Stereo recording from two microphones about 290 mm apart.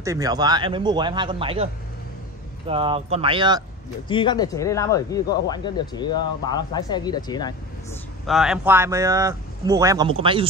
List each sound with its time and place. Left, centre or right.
0.0 s speech: centre
4.1 s speech: centre
8.3 s speech: centre